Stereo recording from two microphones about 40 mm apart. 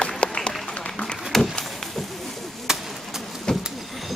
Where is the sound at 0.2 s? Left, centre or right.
Left.